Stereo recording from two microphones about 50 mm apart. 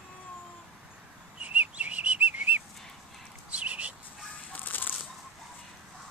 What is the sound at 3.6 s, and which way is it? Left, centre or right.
Bird, right.